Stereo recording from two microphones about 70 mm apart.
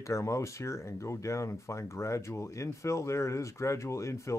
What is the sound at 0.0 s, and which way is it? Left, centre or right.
Speech, left.